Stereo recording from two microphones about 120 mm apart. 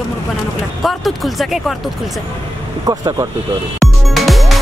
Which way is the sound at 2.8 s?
30° right (ahead or behind).